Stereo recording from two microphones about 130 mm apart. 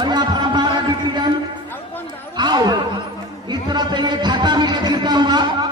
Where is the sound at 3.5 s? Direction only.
35° right (ahead or behind).